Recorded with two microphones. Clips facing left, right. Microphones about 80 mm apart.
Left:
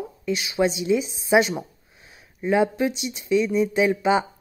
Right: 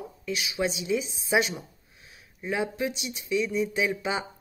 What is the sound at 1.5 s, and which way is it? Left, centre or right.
Speech, left.